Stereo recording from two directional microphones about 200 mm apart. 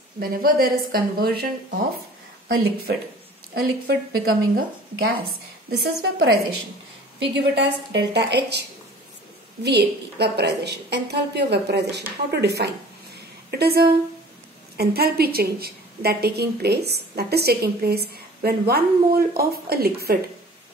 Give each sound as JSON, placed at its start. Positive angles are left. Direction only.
{"t": 0.2, "sound": "a woman's voice", "side_deg": -50}
{"t": 3.5, "sound": "a woman's voice", "side_deg": -50}